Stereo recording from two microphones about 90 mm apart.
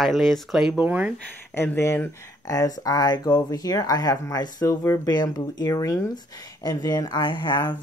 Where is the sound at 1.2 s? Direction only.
25° left (ahead or behind); by 7.6 s 60° left (ahead or behind).